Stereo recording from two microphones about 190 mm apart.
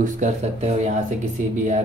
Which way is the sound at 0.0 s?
40° right (ahead or behind).